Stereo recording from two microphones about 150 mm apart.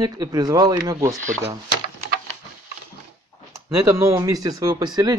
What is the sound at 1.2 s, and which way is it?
Speech, 60° right (ahead or behind).